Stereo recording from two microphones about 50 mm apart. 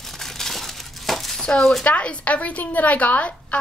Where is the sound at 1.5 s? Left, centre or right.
Centre.